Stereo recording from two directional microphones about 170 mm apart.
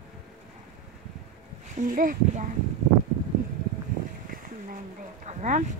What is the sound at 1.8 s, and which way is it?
Speech, 50° right (ahead or behind).